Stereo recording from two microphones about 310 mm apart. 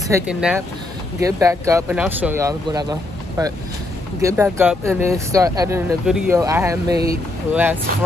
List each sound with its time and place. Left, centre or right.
0.1 s speech: centre